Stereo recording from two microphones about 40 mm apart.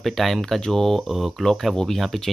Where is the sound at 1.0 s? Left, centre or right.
Centre.